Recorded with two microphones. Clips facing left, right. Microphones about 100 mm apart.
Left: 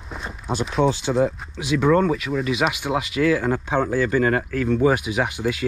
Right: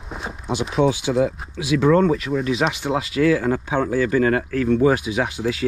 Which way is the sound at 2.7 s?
35° right (ahead or behind).